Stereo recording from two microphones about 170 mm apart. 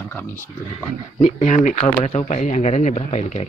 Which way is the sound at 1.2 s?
35° left (ahead or behind).